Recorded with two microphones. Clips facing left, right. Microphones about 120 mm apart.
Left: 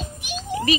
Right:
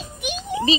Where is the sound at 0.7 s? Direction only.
25° right (ahead or behind).